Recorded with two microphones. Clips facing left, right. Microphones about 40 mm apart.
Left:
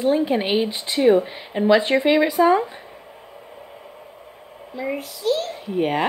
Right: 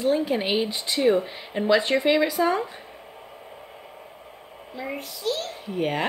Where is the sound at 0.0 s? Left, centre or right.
Centre.